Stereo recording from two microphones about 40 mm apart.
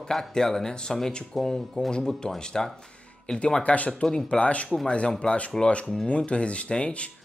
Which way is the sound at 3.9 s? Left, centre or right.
Centre.